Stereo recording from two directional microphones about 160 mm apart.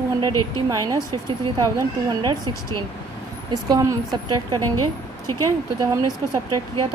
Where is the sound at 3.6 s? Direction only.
25° right (ahead or behind).